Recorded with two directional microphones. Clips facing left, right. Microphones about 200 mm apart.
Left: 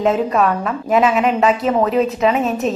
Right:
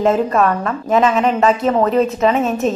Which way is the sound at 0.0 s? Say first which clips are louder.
Right 1 dB; centre (ahead or behind).